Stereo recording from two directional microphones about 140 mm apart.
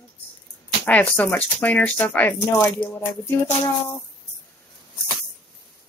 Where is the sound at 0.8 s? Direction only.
10° left (ahead or behind).